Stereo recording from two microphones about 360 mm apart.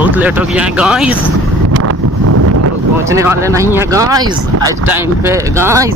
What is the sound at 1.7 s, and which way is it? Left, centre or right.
Wind noise, right.